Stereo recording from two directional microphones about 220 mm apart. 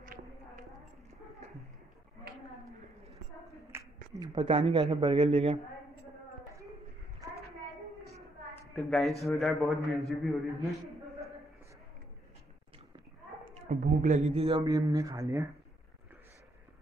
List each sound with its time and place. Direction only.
0.0 s a sound: 40° right (ahead or behind)
3.7 s speech: 15° right (ahead or behind)
8.7 s a man's voice: centre (ahead or behind)
13.6 s a man's voice: 35° right (ahead or behind); by 15.4 s 15° right (ahead or behind)